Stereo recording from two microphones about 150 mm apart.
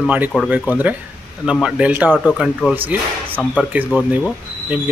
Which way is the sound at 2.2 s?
Centre (ahead or behind).